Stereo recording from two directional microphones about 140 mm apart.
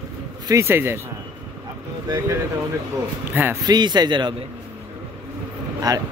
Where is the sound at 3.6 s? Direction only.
30° right (ahead or behind).